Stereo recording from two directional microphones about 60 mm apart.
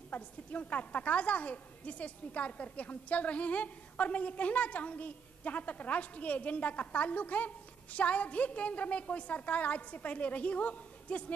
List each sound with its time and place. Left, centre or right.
0.1 s a woman's voice: left